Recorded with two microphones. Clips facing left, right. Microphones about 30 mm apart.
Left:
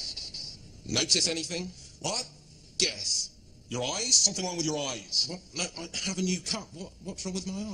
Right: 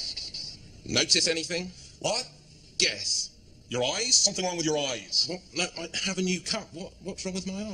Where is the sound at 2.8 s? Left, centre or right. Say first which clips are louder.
Right 2 dB; right.